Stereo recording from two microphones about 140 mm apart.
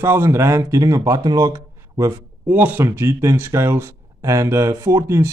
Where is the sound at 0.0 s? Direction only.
20° right (ahead or behind).